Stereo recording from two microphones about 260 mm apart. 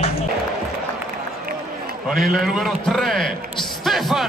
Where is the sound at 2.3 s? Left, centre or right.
Centre.